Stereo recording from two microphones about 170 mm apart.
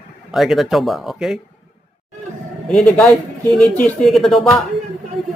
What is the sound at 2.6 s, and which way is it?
Speech, 5° left (ahead or behind).